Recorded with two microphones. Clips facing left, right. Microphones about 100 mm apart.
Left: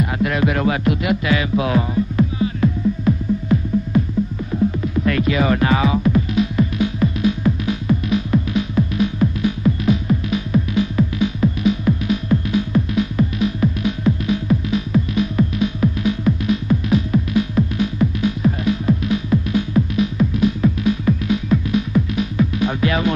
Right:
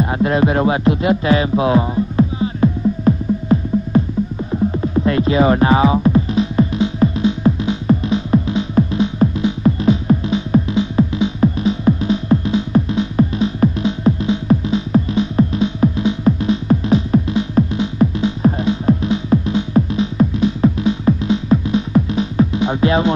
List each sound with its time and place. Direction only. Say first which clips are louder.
0.0 s music: right 4 dB; 30° right (ahead or behind)
3.1 s music: right 4 dB; 40° right (ahead or behind)
18.0 s music: right 5 dB; 40° right (ahead or behind)
18.9 s music: right 5 dB; 30° right (ahead or behind)